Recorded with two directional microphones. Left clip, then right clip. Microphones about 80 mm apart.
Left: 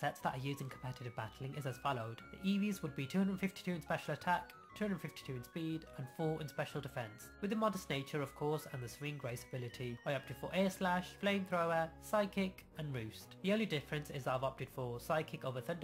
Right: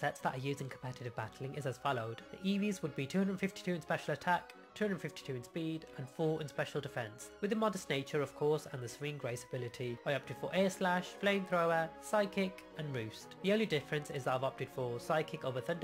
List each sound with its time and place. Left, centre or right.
0.0 s speech: right